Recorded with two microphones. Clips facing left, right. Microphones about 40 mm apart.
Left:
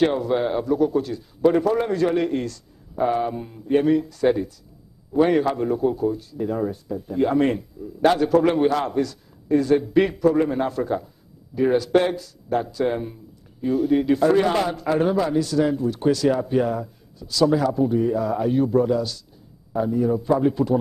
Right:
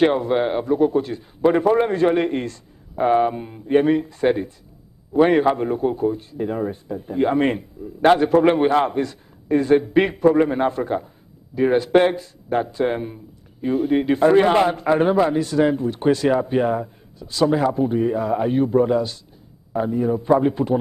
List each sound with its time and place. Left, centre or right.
0.0 s a man's voice: right